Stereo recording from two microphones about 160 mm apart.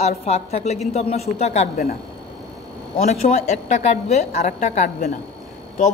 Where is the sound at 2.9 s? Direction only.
45° left (ahead or behind).